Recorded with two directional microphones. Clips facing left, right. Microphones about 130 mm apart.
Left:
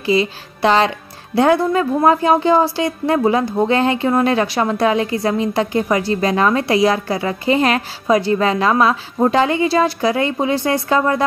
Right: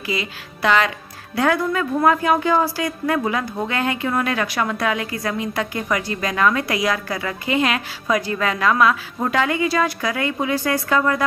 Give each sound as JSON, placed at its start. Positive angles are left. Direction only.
{"t": 0.0, "sound": "speech", "side_deg": 30}